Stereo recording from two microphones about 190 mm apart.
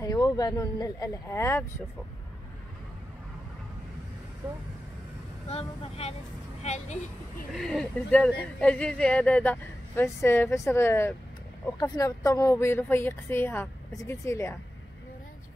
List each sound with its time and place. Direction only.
0.0 s speech: 20° left (ahead or behind)
5.5 s speech: 30° left (ahead or behind)
7.5 s speech: centre (ahead or behind)